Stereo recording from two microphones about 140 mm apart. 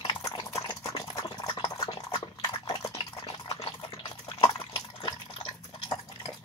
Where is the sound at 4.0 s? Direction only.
30° left (ahead or behind).